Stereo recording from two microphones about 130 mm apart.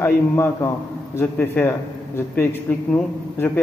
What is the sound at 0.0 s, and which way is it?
A man's voice, 20° left (ahead or behind).